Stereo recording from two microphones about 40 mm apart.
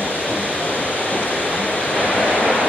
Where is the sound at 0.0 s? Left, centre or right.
Left.